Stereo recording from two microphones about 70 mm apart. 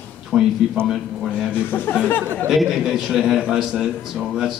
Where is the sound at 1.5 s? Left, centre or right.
Left.